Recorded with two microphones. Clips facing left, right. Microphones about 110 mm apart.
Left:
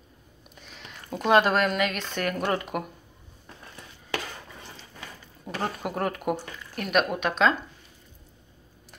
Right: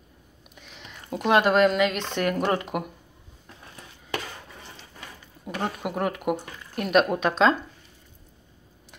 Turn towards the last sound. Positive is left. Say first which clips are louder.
# right 3 dB
turn(degrees=-30)  # may be behind; listen again after turning